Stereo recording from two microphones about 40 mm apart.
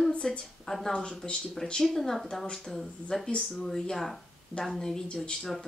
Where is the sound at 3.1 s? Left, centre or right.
Centre.